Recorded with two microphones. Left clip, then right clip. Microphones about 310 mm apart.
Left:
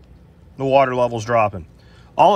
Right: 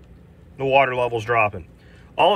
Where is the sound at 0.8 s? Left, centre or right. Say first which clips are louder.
Left 2 dB; centre.